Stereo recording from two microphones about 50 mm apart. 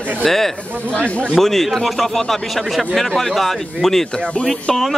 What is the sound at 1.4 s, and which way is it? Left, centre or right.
A man's voice, centre.